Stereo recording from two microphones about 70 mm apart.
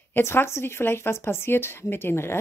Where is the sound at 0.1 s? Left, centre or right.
Left.